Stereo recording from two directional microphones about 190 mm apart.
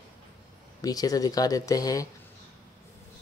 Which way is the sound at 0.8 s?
20° left (ahead or behind).